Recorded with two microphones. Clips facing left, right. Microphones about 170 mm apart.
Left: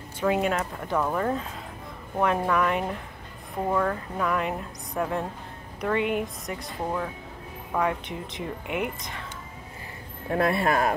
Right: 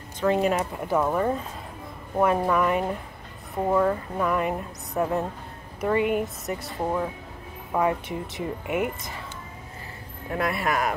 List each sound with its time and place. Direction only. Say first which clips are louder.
0.2 s speech: right 2 dB; 5° left (ahead or behind)
0.5 s speech: right 3 dB; 10° right (ahead or behind)
10.3 s speech: left 3 dB; 30° left (ahead or behind)